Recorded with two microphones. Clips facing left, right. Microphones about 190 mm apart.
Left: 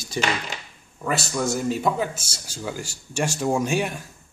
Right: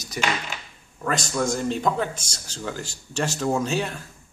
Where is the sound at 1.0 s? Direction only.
5° left (ahead or behind).